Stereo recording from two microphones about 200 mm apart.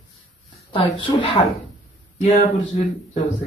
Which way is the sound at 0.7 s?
25° left (ahead or behind).